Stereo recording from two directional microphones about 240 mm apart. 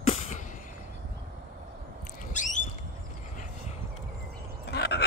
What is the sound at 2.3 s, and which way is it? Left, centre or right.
Squawk, left.